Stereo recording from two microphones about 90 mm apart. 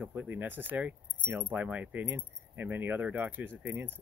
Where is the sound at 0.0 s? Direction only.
20° right (ahead or behind).